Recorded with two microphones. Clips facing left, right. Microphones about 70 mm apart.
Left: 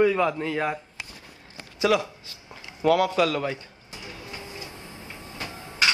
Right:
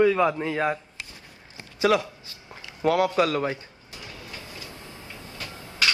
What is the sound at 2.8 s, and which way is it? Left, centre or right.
Speech, right.